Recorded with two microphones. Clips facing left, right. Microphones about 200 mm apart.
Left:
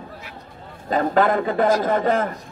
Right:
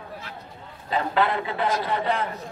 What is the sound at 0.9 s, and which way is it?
A man's voice, 45° left (ahead or behind).